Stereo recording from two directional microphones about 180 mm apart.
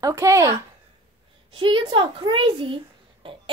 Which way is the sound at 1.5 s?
30° right (ahead or behind).